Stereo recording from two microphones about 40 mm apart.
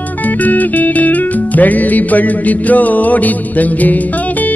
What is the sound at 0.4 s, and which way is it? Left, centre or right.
Music, left.